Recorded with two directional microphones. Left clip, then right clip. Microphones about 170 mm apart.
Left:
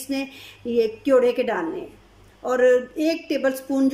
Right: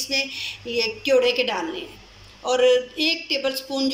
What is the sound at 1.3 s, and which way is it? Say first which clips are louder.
Speech: even; 55° left (ahead or behind).